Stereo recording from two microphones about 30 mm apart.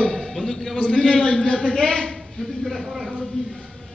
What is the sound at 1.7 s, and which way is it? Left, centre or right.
Speech, centre.